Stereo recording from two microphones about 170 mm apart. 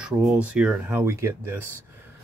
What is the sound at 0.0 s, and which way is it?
Speech, 5° right (ahead or behind).